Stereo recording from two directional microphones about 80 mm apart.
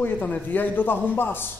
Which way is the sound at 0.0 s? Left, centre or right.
Left.